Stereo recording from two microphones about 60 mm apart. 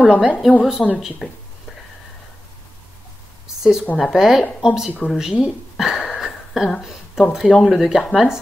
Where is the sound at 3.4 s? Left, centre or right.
Centre.